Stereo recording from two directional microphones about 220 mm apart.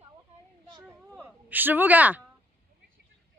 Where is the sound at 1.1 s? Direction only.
10° right (ahead or behind).